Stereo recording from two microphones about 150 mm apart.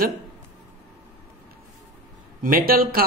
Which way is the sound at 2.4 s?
75° right (ahead or behind).